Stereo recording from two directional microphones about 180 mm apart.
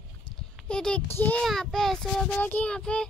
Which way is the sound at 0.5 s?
5° left (ahead or behind).